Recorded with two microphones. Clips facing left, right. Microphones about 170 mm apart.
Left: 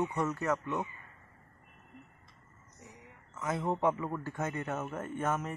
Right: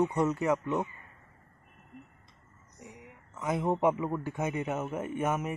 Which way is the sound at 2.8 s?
15° right (ahead or behind).